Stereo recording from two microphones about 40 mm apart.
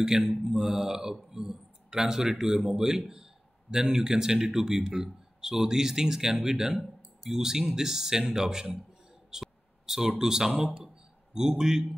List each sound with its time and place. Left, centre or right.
0.0 s a man's voice: centre
9.3 s a sound: centre
10.6 s a man's voice: centre